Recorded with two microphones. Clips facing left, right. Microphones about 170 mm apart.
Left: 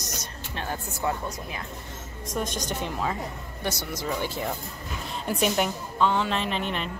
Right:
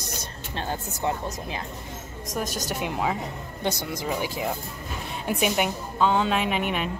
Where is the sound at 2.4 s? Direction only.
5° right (ahead or behind).